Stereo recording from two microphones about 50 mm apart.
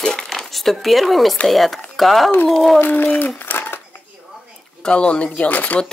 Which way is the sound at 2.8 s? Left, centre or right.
Left.